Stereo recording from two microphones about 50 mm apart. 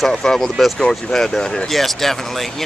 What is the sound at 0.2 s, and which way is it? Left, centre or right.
Speech, centre.